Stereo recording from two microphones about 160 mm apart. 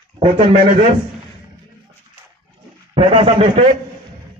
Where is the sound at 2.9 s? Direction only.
35° right (ahead or behind).